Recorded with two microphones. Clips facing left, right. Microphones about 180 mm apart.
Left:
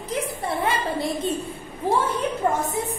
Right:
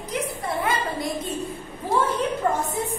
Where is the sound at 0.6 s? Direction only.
30° left (ahead or behind).